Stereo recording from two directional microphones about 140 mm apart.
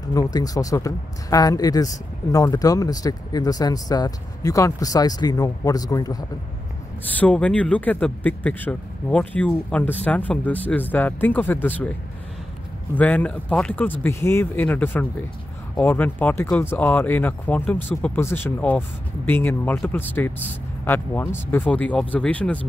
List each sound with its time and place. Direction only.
0.0 s speech: 25° left (ahead or behind)
7.1 s speech: 10° left (ahead or behind)
12.9 s speech: 10° left (ahead or behind)